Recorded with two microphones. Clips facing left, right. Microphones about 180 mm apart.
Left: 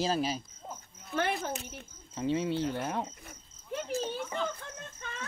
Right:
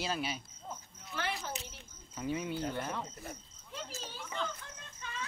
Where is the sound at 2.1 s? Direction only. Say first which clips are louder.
Left 6 dB; 30° left (ahead or behind).